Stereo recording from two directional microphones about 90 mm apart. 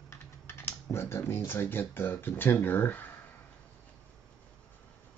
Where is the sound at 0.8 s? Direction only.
30° left (ahead or behind).